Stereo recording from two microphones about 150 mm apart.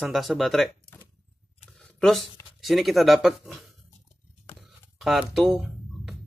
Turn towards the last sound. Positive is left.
turn(degrees=-5)  # may be behind; listen again after turning